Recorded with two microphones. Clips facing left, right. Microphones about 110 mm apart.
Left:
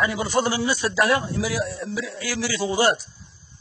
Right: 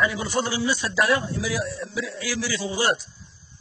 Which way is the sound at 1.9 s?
50° left (ahead or behind).